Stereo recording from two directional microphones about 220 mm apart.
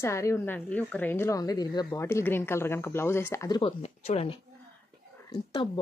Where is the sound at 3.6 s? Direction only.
30° left (ahead or behind).